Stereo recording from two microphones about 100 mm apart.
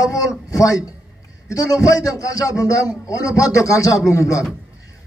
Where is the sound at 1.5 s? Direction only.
35° left (ahead or behind).